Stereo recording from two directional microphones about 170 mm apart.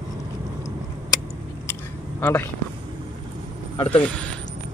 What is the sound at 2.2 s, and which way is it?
Speech, 15° left (ahead or behind).